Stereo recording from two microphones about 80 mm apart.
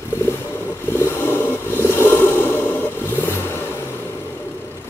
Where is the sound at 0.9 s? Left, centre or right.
Left.